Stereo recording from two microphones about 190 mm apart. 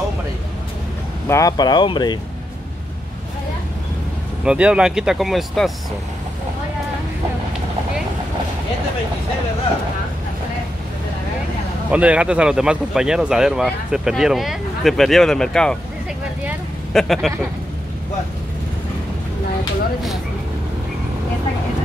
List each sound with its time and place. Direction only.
1.2 s speech: 15° left (ahead or behind)
4.5 s speech: 5° right (ahead or behind)
11.9 s speech: 5° right (ahead or behind)
16.9 s speech: centre (ahead or behind)